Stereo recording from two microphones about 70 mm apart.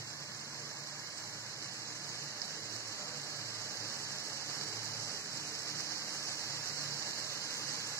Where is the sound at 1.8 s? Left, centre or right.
Left.